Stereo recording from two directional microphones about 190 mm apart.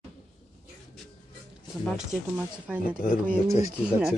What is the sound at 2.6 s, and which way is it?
Speech, 5° right (ahead or behind).